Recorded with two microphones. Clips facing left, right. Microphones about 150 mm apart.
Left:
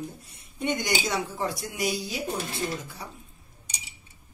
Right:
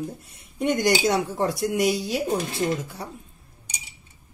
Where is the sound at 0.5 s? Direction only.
90° right.